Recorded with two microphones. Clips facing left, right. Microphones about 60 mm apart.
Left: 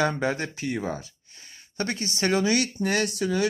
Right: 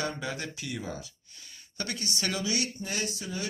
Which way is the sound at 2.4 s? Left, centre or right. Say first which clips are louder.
Left 8 dB; left.